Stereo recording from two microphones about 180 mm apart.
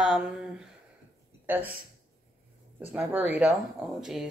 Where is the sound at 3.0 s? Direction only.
10° right (ahead or behind).